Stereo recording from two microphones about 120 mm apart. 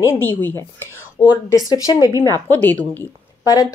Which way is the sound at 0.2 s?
15° left (ahead or behind).